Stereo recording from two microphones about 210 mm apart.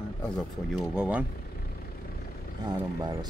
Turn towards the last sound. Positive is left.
turn(degrees=-20)  # may be behind; listen again after turning